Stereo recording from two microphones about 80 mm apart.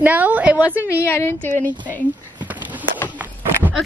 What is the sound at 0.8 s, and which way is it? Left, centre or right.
Speech, left.